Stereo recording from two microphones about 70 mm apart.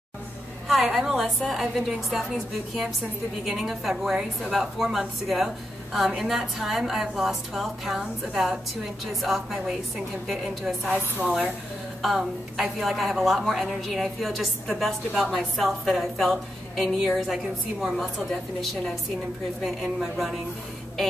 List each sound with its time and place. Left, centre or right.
0.7 s a woman's voice: centre
19.6 s a woman's voice: centre